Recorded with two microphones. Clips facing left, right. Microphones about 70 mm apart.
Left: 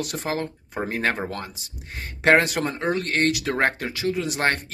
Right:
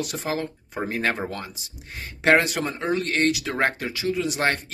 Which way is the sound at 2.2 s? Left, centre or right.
Left.